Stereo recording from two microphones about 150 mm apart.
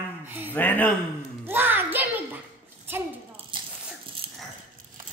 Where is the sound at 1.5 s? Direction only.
15° right (ahead or behind).